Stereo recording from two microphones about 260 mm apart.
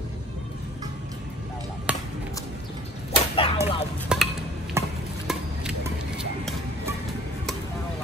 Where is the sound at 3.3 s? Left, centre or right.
Left.